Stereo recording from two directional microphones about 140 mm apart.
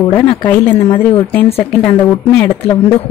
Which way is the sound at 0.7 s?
40° left (ahead or behind).